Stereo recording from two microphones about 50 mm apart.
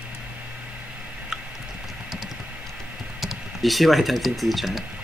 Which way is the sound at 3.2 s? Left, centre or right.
Centre.